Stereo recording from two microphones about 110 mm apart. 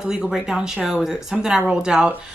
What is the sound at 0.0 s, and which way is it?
Speech, 5° right (ahead or behind).